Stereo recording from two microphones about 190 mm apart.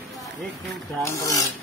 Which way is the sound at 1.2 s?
15° left (ahead or behind).